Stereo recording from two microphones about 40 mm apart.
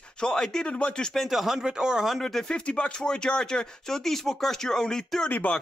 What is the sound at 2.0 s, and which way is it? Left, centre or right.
Speech, centre.